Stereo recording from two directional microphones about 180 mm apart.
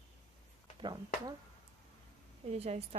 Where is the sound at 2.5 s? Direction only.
35° right (ahead or behind).